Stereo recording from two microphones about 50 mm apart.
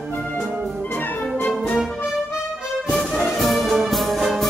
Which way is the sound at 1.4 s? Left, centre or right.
Centre.